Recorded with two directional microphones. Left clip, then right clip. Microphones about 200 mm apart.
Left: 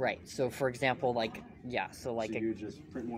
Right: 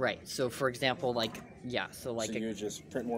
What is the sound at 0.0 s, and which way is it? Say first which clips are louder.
Speech: even; 15° right (ahead or behind).